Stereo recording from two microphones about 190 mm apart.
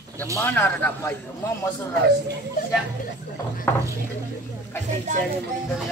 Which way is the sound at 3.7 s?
15° left (ahead or behind).